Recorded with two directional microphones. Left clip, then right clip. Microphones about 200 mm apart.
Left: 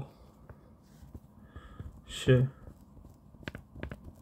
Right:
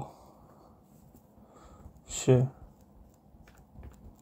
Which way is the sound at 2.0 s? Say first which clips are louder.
Right 1 dB; 35° left (ahead or behind).